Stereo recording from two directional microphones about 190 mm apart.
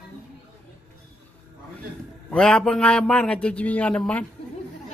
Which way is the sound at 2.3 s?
5° left (ahead or behind).